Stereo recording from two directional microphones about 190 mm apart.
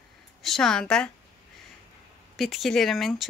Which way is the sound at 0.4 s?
Centre (ahead or behind).